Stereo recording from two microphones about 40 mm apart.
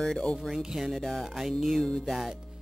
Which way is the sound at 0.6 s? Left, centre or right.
Centre.